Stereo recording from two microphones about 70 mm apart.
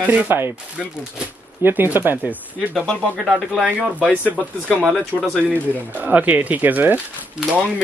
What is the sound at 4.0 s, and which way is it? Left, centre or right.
Speech, centre.